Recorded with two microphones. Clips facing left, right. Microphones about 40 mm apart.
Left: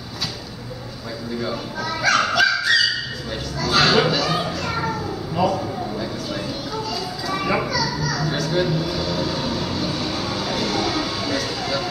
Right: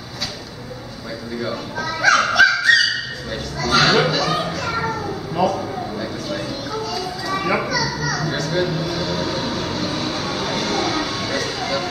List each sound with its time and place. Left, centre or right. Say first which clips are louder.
1.4 s speech: right 2 dB; centre
2.0 s dog: right 4 dB; centre
3.6 s children playing: right 1 dB; centre
8.1 s music: right 1 dB; centre
9.0 s music: right 1 dB; centre
9.8 s vehicle: right 1 dB; right